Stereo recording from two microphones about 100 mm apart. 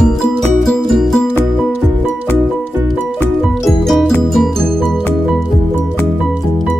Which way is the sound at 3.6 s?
Centre (ahead or behind).